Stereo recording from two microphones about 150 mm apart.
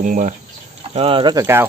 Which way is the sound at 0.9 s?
40° right (ahead or behind).